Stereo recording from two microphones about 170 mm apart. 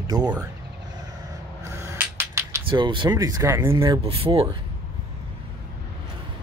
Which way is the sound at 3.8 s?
30° right (ahead or behind).